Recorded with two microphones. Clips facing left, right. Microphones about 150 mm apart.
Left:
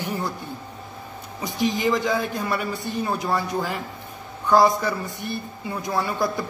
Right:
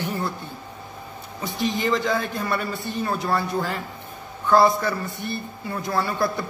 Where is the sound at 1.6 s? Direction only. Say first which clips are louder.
Left 1 dB; 20° left (ahead or behind).